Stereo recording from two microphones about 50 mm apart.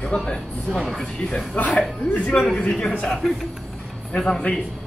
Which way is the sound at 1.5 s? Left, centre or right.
Left.